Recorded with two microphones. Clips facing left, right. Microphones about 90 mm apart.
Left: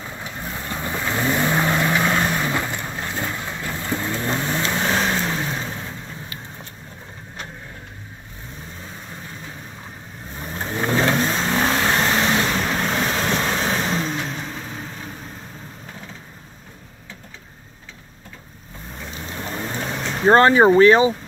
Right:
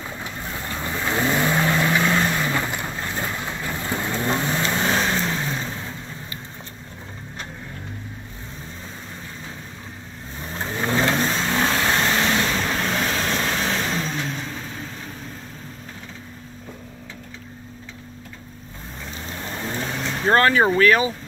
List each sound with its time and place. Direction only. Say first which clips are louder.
0.4 s vehicle: left 2 dB; 5° left (ahead or behind)
10.5 s vehicle: left 1 dB; 5° left (ahead or behind)
19.8 s vehicle: even; centre (ahead or behind)
20.2 s speech: left 5 dB; 25° left (ahead or behind)